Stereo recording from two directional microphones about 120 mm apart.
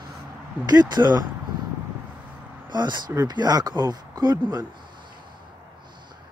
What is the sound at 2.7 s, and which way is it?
Speech, 40° right (ahead or behind).